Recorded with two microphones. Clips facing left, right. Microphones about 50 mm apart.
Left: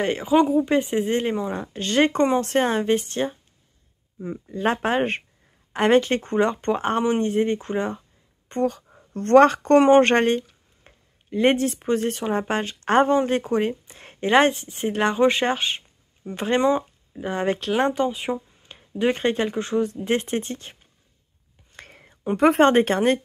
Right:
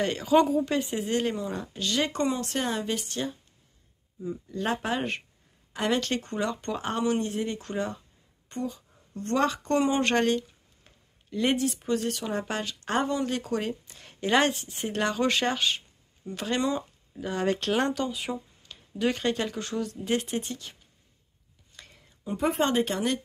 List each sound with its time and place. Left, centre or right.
0.0 s speech: left
8.6 s speech: left
21.7 s whispering: left
22.6 s speech: left